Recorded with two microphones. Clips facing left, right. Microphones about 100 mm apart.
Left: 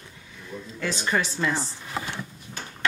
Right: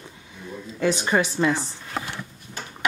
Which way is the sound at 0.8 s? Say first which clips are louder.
Right 5 dB; 20° right (ahead or behind).